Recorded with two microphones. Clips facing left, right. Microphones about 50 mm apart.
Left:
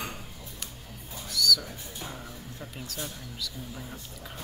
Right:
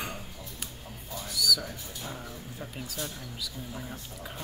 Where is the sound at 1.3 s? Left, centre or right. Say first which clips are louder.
Left 2 dB; centre.